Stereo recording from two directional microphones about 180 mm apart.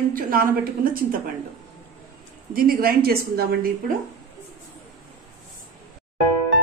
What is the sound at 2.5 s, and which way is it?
A woman's voice, 55° right (ahead or behind).